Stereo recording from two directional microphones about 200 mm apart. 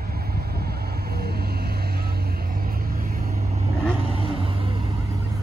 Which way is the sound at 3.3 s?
30° right (ahead or behind).